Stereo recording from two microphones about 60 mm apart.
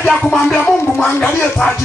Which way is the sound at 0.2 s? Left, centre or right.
Centre.